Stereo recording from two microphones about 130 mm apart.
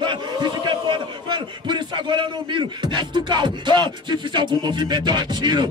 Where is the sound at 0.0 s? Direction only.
35° right (ahead or behind).